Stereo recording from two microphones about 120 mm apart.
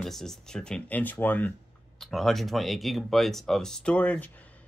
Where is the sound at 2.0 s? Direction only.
Centre (ahead or behind).